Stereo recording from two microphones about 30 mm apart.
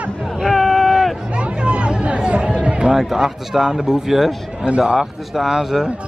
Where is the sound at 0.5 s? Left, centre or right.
Centre.